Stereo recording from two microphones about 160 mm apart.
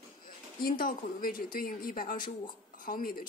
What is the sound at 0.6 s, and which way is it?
Speech, 60° left (ahead or behind).